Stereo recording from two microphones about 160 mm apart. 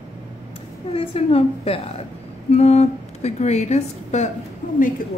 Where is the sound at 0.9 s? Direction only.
35° left (ahead or behind).